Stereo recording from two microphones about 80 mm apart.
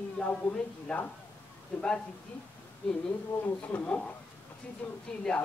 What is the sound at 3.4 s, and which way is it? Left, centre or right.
A man's voice, left.